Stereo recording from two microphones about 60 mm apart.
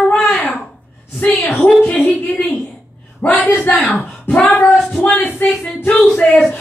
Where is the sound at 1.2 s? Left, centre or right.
Left.